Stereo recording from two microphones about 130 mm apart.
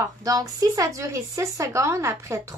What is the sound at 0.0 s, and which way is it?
Speech, 30° right (ahead or behind).